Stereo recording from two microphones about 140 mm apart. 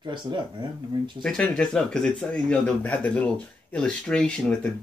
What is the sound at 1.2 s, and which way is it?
Speech, 5° left (ahead or behind).